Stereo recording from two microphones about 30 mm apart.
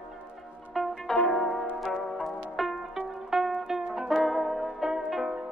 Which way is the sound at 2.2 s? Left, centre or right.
Centre.